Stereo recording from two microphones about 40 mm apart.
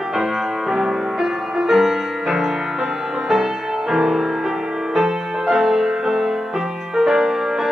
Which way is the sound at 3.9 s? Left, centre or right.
Centre.